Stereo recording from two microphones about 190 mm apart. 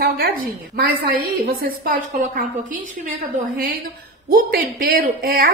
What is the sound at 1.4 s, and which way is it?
A woman's voice, 50° right (ahead or behind).